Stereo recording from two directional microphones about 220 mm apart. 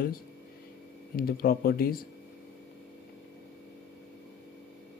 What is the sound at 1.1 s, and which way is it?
Speech, 40° left (ahead or behind).